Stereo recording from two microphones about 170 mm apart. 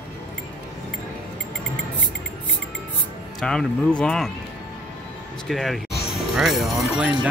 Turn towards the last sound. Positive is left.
turn(degrees=-5)  # may be behind; listen again after turning